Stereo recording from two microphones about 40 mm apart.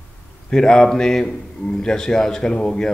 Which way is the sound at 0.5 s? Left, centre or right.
Centre.